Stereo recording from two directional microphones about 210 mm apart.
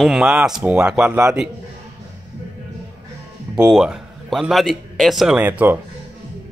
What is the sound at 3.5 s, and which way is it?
A man's voice, 5° right (ahead or behind).